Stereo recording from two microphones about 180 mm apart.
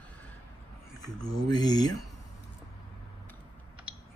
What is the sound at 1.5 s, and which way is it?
Speech, 20° left (ahead or behind).